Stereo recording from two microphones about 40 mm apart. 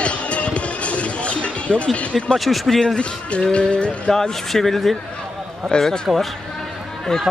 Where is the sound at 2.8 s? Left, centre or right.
Left.